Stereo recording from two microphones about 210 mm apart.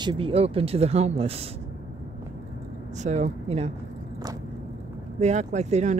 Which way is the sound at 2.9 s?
35° right (ahead or behind).